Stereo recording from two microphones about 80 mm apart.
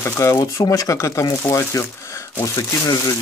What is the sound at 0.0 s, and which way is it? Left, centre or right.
Speech, left.